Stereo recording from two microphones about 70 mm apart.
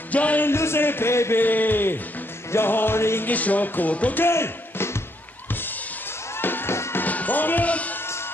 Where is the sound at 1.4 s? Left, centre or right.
Left.